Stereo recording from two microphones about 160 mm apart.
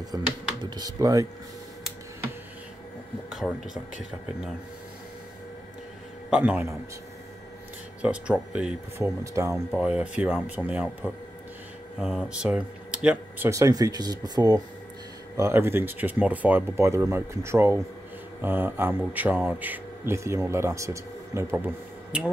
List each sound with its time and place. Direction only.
0.1 s speech: 25° right (ahead or behind)
3.3 s speech: 5° right (ahead or behind)
6.3 s speech: 5° right (ahead or behind)
8.0 s speech: 5° right (ahead or behind)
8.9 s speech: 20° right (ahead or behind)
9.7 s speech: 5° right (ahead or behind)
13.5 s speech: 20° right (ahead or behind)